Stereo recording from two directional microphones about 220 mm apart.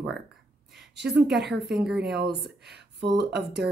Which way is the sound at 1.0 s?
50° right (ahead or behind).